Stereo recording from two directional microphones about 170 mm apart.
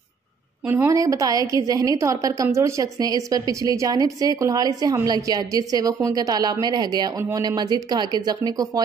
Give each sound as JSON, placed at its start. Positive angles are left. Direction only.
{"t": 0.7, "sound": "a woman's voice", "side_deg": -15}